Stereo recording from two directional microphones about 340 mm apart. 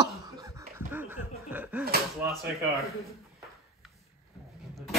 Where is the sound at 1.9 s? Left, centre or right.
Right.